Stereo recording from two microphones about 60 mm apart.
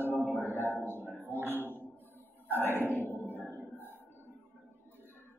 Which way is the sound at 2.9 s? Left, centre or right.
Right.